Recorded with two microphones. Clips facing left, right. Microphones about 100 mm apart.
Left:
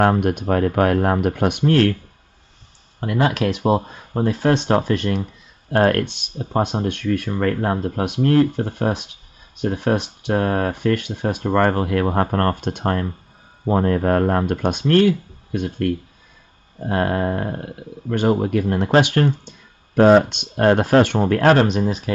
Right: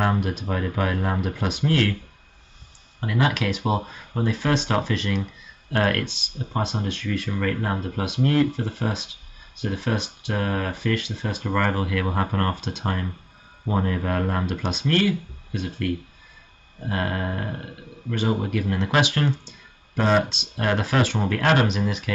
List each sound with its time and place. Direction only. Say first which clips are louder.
0.0 s speech: left 7 dB; 55° left (ahead or behind)
3.0 s speech: left 4 dB; 40° left (ahead or behind)
6.6 s speech: left 6 dB; 55° left (ahead or behind)
16.8 s a sound: left 7 dB; 40° left (ahead or behind)
18.1 s speech: left 6 dB; 55° left (ahead or behind)
18.5 s speech: left 7 dB; 45° left (ahead or behind)